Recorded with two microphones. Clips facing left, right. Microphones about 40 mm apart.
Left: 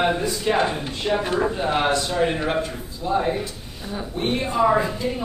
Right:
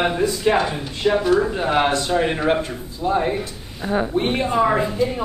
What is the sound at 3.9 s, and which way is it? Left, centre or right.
Speech, right.